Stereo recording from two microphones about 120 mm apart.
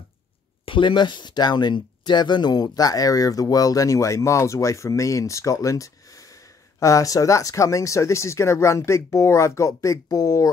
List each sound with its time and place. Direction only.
0.7 s speech: 45° left (ahead or behind)